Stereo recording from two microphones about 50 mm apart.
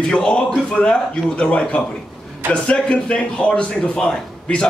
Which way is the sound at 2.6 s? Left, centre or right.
Left.